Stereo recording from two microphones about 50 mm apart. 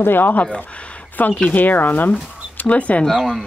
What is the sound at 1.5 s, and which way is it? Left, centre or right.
A woman's voice, left.